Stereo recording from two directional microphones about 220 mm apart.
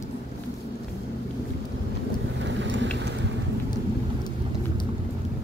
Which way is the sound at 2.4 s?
55° right (ahead or behind).